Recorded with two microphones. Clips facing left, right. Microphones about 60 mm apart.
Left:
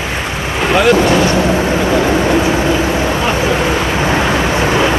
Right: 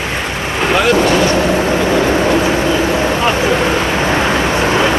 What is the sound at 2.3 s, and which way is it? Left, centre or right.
Vehicle, centre.